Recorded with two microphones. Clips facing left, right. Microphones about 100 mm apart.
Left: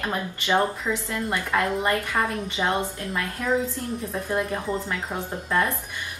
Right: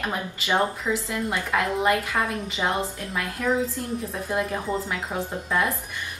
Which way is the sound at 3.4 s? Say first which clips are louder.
Right 1 dB; centre (ahead or behind).